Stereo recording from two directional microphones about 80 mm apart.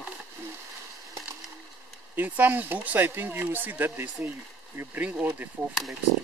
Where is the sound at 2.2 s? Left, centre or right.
Right.